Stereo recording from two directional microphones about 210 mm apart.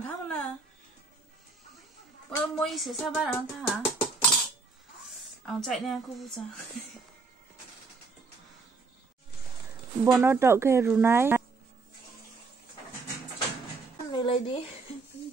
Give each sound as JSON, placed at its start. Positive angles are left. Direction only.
{"t": 0.0, "sound": "a sound", "side_deg": 5}
{"t": 2.3, "sound": "a woman's voice", "side_deg": 0}
{"t": 3.6, "sound": "a sound", "side_deg": 5}
{"t": 5.4, "sound": "a woman's voice", "side_deg": 0}
{"t": 10.1, "sound": "speech", "side_deg": -10}
{"t": 14.1, "sound": "speech", "side_deg": 25}